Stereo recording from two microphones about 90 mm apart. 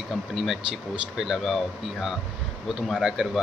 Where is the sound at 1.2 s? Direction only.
5° right (ahead or behind).